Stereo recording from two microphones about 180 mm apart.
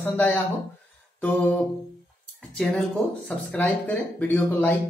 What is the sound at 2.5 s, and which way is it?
A woman's voice, 5° left (ahead or behind).